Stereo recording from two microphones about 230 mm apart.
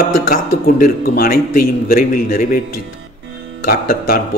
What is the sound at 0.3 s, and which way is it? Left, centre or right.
A man's voice, left.